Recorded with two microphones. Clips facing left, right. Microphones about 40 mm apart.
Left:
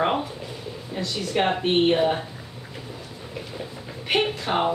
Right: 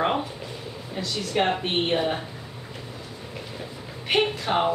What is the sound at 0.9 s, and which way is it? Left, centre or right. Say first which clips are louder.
A woman's voice: left 1 dB; centre.